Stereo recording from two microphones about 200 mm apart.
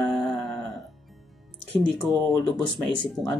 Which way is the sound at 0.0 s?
Centre (ahead or behind).